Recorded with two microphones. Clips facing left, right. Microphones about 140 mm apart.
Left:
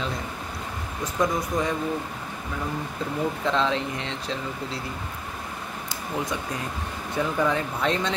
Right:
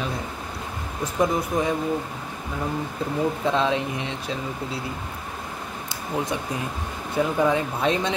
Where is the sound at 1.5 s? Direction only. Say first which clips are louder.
Right 2 dB; 25° right (ahead or behind).